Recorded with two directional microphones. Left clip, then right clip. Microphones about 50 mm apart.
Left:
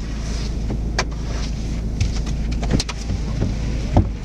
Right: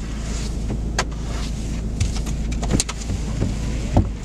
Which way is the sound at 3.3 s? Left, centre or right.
Centre.